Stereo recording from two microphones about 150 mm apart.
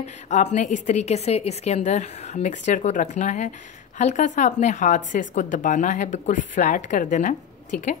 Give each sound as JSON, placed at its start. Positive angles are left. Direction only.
{"t": 0.3, "sound": "a woman's voice", "side_deg": 50}